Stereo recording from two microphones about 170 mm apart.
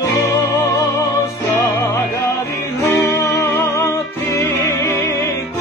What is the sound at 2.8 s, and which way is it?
Music, 15° left (ahead or behind).